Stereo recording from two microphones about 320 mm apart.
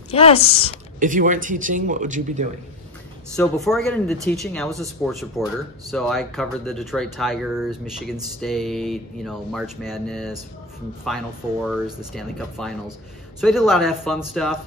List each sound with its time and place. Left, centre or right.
0.1 s speech: centre
0.9 s speech: right
3.3 s speech: centre